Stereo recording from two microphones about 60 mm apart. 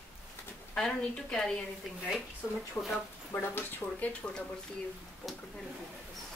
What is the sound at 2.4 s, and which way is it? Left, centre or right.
Speech, left.